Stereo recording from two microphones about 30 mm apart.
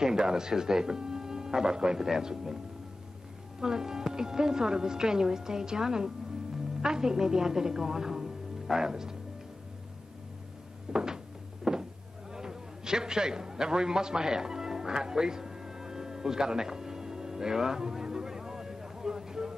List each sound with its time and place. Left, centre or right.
0.0 s a woman's voice: right
10.9 s cupboard open or close: right
11.7 s power windows: centre
12.3 s a sound: right